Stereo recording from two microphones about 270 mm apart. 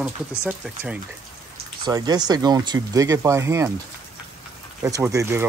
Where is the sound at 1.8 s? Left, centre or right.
Centre.